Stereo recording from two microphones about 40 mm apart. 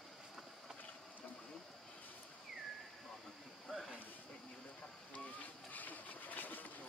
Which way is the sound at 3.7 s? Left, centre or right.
Centre.